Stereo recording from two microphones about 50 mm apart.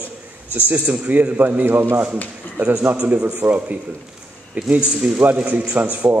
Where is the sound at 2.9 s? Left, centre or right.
Right.